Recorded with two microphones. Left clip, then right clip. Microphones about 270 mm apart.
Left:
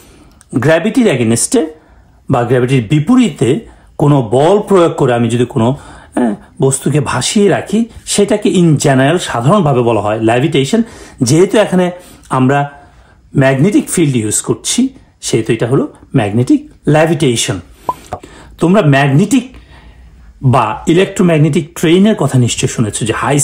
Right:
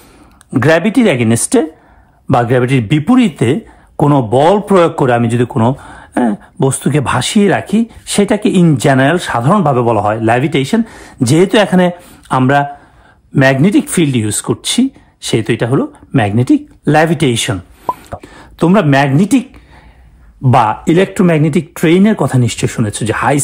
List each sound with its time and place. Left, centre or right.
0.5 s a man's voice: centre
4.3 s a man's voice: right
5.0 s a man's voice: centre
20.5 s speech: centre